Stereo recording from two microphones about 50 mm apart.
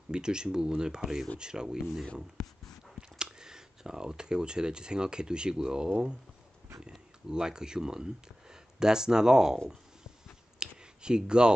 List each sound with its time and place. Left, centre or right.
0.1 s speech: centre
6.9 s speech: centre
10.6 s a sound: centre